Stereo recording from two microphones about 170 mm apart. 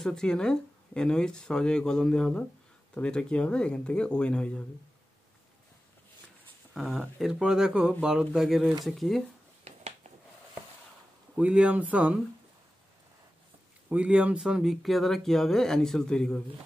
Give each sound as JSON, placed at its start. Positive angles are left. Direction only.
{"t": 0.0, "sound": "speech", "side_deg": 5}
{"t": 6.7, "sound": "speech", "side_deg": 0}
{"t": 11.3, "sound": "speech", "side_deg": -5}
{"t": 13.8, "sound": "speech", "side_deg": -5}